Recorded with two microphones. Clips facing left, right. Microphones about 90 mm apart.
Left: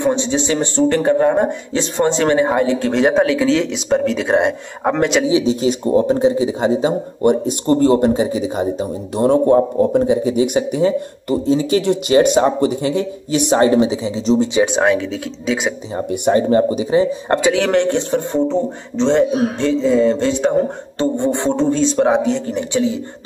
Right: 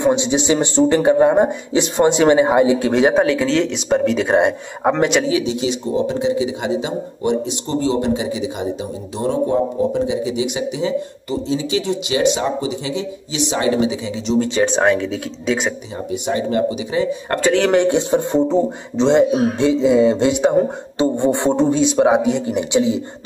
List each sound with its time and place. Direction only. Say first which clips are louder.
0.0 s speech: right 1 dB; 15° right (ahead or behind)
5.4 s a man's voice: left 4 dB; 40° left (ahead or behind)
9.2 s a man's voice: left 5 dB; 50° left (ahead or behind); by 14.4 s 35° left (ahead or behind)
14.4 s speech: even; 15° left (ahead or behind)
14.7 s speech: even; centre (ahead or behind)
16.1 s speech: left 6 dB; 45° left (ahead or behind)
17.4 s speech: right 2 dB; 5° left (ahead or behind); by 23.0 s 15° right (ahead or behind)